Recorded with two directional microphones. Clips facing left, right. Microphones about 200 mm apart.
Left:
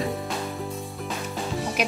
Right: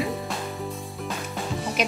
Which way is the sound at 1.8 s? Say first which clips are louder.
Right 1 dB; 10° left (ahead or behind).